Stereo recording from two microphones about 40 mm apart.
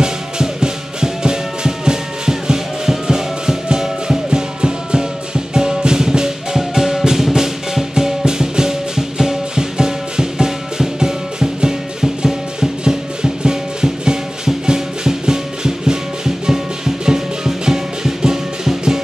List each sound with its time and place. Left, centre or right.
0.0 s music: centre